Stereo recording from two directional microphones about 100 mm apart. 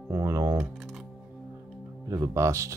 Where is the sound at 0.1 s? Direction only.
30° right (ahead or behind).